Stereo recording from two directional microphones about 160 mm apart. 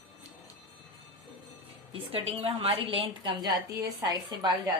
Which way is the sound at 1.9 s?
35° right (ahead or behind).